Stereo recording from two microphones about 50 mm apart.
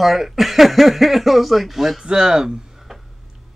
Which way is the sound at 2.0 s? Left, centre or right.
Centre.